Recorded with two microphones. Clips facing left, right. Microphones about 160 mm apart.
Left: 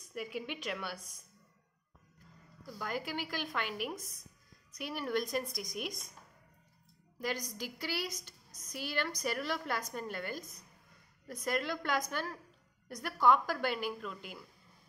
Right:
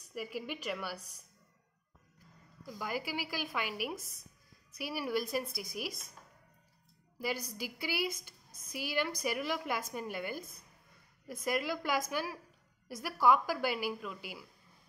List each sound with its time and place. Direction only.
0.1 s a woman's voice: 5° right (ahead or behind)
2.6 s a woman's voice: 5° right (ahead or behind)
7.2 s a woman's voice: 10° right (ahead or behind)
8.5 s speech: 55° right (ahead or behind)
8.7 s a woman's voice: 10° right (ahead or behind)
11.4 s a woman's voice: 5° right (ahead or behind)